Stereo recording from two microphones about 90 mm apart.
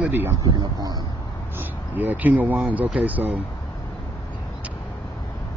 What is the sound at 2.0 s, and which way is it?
Speech, 20° right (ahead or behind).